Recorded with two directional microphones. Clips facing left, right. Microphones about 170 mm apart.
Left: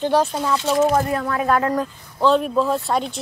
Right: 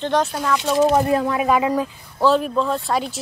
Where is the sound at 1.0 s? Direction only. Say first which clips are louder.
Right 4 dB; 25° right (ahead or behind).